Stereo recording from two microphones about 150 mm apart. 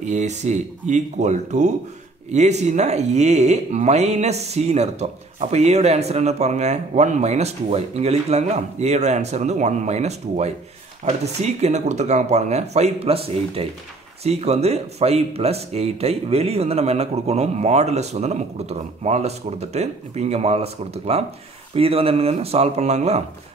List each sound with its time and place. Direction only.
0.0 s speech: 50° right (ahead or behind)